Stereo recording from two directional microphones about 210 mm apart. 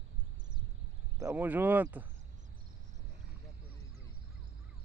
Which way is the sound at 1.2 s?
10° right (ahead or behind).